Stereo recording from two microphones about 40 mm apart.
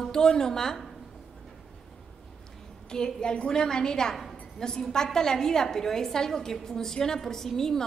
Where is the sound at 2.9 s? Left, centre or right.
Centre.